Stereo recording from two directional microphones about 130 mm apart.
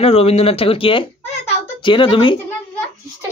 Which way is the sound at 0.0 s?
50° left (ahead or behind).